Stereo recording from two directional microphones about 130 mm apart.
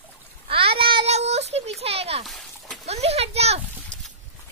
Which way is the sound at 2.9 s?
55° right (ahead or behind).